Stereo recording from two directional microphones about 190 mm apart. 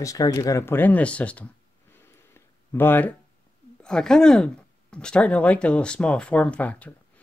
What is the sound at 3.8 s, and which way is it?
Speech, 5° left (ahead or behind).